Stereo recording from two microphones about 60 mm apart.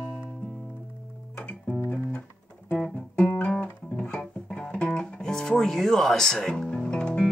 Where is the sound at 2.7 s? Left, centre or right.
Left.